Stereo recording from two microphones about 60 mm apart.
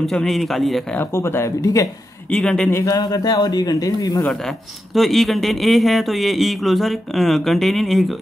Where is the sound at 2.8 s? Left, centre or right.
Left.